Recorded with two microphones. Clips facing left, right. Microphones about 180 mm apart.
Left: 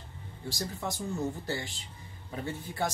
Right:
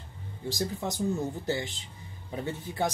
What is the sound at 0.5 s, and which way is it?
Speech, 20° right (ahead or behind).